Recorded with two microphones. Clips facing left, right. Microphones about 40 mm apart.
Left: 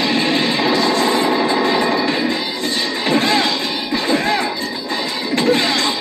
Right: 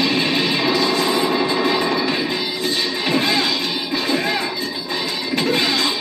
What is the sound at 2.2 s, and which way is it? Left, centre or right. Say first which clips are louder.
Music: left 2 dB; left.